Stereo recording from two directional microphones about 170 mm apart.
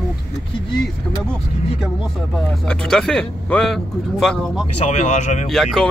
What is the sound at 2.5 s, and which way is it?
Speech, 5° left (ahead or behind).